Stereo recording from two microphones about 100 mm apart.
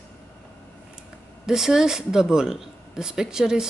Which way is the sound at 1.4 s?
5° right (ahead or behind).